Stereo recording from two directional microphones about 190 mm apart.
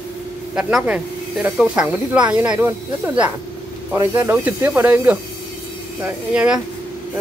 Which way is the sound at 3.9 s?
10° right (ahead or behind).